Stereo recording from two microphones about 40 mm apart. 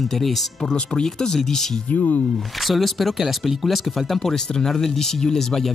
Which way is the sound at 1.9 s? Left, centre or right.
Left.